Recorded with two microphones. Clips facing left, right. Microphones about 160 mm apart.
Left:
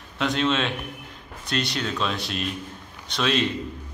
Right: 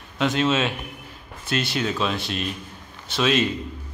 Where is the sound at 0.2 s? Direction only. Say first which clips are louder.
Right 2 dB; centre (ahead or behind).